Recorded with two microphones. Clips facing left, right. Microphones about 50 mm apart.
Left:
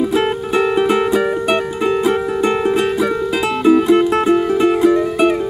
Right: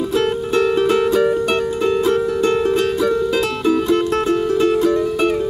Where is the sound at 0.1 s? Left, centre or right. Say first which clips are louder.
Left 1 dB; centre.